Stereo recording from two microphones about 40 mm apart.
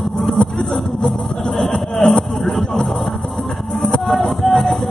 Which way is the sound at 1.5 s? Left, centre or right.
Centre.